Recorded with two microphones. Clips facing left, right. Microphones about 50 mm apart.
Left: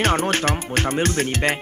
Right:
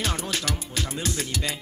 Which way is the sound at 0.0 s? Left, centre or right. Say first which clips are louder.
Left 9 dB; left.